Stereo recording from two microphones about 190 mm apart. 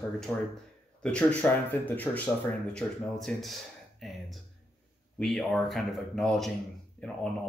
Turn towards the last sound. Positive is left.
turn(degrees=5)  # may be behind; listen again after turning